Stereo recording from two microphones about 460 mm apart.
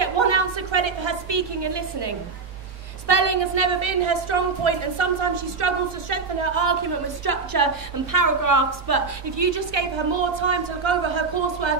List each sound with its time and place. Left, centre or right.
0.0 s a sound: right
3.1 s a woman's voice: right
10.4 s a woman's voice: right